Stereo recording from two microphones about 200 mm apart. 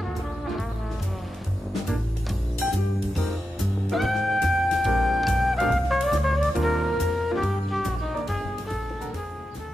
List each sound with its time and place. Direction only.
3.9 s music: centre (ahead or behind)